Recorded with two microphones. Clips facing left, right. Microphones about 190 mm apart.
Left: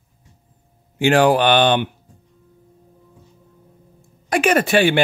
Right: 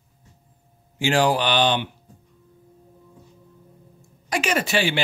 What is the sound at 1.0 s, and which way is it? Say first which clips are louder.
Speech: left 6 dB; 60° left (ahead or behind).